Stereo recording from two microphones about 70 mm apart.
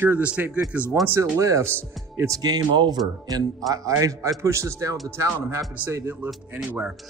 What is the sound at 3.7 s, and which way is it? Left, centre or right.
A man's voice, right.